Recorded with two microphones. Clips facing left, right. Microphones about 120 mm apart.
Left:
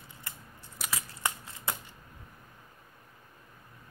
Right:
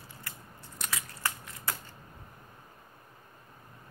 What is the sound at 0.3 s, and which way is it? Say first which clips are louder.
Biting: even; 20° left (ahead or behind).